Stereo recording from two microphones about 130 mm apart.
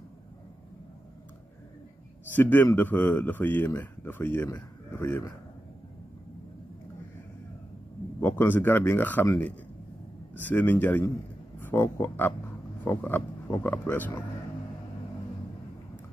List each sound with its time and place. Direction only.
2.3 s speech: 15° left (ahead or behind)
8.2 s speech: 20° left (ahead or behind)